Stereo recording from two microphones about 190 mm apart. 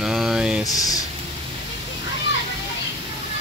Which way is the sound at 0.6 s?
20° left (ahead or behind).